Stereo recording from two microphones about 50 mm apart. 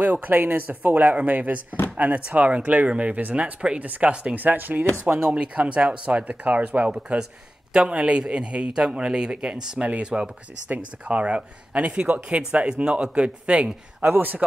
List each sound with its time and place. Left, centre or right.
0.0 s speech: right
4.1 s speech: right
4.4 s speech: right
5.3 s speech: right